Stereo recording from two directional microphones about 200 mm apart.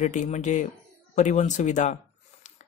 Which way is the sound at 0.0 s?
40° left (ahead or behind).